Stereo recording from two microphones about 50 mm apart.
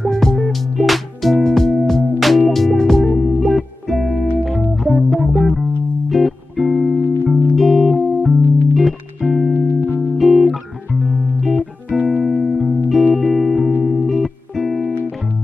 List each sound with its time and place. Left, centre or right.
0.1 s music: centre
11.9 s music: centre
12.2 s music: centre